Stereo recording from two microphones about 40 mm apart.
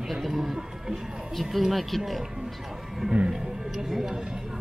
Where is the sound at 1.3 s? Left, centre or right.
Centre.